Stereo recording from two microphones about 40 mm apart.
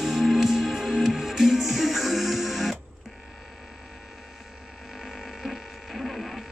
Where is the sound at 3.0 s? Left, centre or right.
Centre.